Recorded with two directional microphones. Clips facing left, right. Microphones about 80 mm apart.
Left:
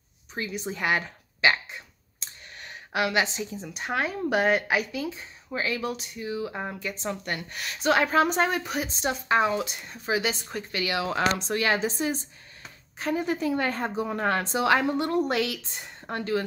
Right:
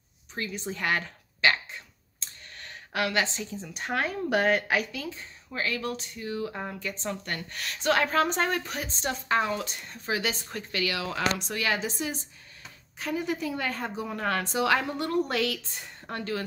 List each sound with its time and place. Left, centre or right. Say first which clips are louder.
0.3 s speech: left 2 dB; centre
11.1 s a woman's voice: left 4 dB; left